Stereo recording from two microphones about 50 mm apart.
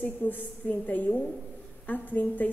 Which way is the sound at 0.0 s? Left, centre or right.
Left.